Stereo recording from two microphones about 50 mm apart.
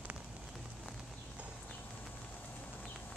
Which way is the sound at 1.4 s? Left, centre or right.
Right.